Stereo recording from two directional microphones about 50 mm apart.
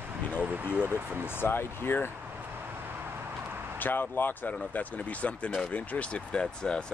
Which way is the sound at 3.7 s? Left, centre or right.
Left.